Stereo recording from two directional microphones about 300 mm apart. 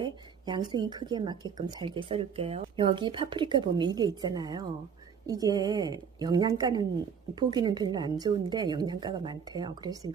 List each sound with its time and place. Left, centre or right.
0.0 s speech: centre